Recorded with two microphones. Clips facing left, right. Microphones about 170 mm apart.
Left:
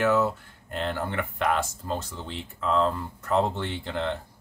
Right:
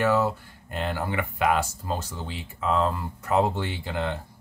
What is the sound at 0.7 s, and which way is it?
Speech, 5° right (ahead or behind).